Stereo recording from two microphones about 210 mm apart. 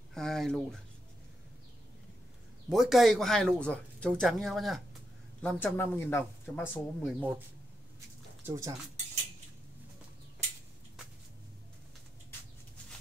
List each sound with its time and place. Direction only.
0.1 s a sound: centre (ahead or behind)
2.7 s speech: centre (ahead or behind)
8.5 s speech: 15° right (ahead or behind)